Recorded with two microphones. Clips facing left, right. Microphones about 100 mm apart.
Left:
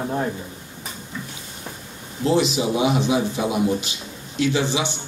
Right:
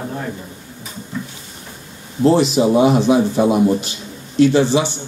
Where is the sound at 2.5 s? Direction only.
45° right (ahead or behind).